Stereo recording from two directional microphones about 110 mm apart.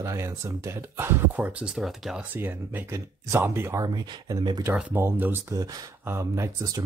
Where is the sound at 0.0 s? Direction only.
25° right (ahead or behind); by 2.2 s 5° right (ahead or behind).